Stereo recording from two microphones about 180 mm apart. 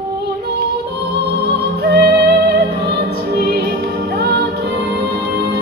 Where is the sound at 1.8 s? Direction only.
65° right (ahead or behind).